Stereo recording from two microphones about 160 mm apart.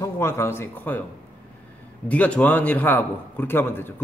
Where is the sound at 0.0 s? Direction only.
15° left (ahead or behind).